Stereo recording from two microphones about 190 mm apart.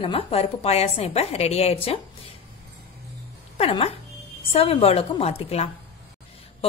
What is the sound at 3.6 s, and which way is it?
Speech, 30° left (ahead or behind).